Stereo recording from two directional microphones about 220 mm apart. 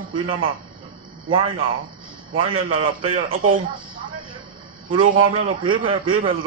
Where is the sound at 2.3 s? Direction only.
25° right (ahead or behind).